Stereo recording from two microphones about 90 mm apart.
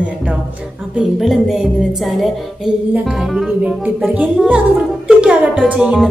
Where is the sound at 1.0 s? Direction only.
5° right (ahead or behind).